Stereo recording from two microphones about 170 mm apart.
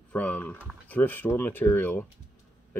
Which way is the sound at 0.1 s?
10° left (ahead or behind).